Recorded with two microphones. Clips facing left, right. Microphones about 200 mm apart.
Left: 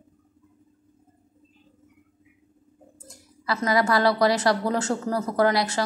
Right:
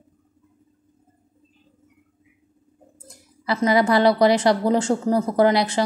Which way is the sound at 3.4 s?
25° right (ahead or behind).